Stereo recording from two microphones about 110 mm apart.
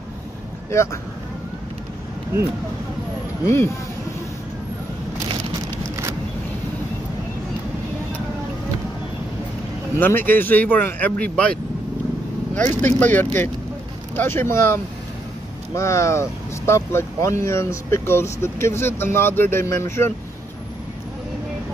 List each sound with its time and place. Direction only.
3.4 s speech: 25° left (ahead or behind)
9.9 s speech: 20° left (ahead or behind)
12.8 s speech: 15° left (ahead or behind)